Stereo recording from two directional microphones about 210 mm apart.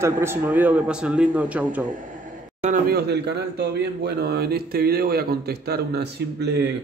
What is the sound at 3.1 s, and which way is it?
Speech, 50° right (ahead or behind).